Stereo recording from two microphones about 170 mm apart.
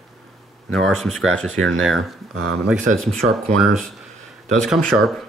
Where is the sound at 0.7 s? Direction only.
Centre (ahead or behind).